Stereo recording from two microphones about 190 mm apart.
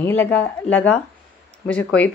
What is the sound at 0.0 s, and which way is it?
Speech, 10° left (ahead or behind).